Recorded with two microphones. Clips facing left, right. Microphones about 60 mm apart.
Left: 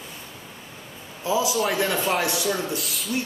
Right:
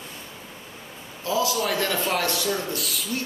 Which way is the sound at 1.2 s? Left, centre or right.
Centre.